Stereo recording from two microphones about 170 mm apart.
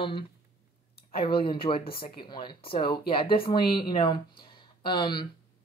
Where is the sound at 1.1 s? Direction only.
30° left (ahead or behind).